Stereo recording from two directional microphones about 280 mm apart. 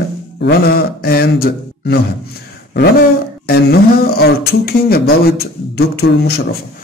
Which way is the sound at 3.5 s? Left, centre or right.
Left.